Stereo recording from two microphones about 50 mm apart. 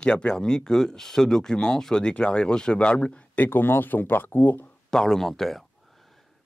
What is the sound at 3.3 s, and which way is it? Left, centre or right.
Speech, left.